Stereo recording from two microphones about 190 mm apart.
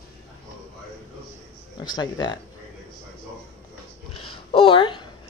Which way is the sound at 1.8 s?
20° left (ahead or behind).